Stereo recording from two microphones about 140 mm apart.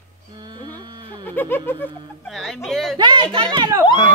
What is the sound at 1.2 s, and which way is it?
Speech, 15° left (ahead or behind).